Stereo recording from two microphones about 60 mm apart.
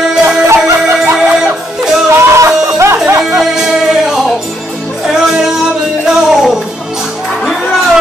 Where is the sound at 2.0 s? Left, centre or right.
Right.